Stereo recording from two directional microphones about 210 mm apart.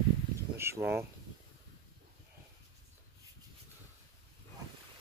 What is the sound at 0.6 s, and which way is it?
Speech, 10° right (ahead or behind).